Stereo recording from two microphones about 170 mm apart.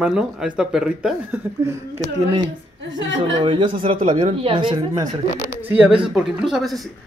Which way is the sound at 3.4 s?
30° right (ahead or behind).